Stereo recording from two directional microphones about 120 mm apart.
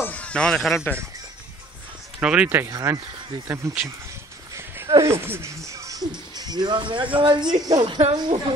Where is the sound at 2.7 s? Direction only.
30° right (ahead or behind).